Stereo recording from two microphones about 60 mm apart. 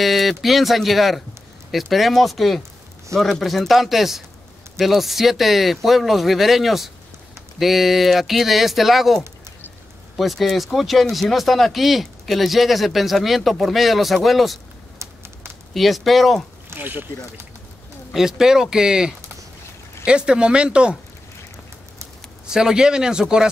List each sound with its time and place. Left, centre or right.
0.0 s speech: centre
15.7 s speech: centre
16.7 s speech: right
18.1 s speech: centre
22.5 s speech: centre